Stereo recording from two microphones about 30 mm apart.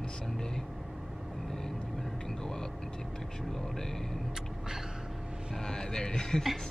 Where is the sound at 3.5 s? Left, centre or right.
Centre.